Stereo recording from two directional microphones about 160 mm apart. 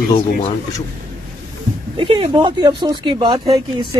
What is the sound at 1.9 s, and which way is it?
Speech, 30° right (ahead or behind).